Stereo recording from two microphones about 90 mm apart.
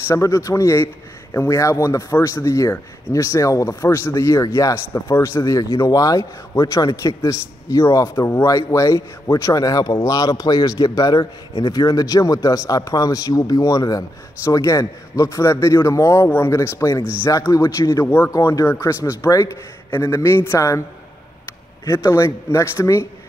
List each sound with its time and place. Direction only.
0.1 s speech: 35° left (ahead or behind)
21.8 s speech: 35° left (ahead or behind)